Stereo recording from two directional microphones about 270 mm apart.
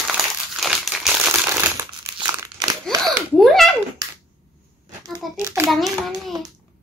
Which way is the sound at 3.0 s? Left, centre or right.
Centre.